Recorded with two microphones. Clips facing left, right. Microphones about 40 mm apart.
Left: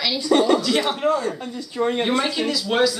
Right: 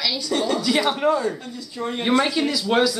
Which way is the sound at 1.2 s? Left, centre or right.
Left.